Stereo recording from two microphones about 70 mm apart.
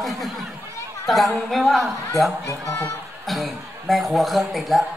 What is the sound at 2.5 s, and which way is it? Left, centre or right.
Speech, left.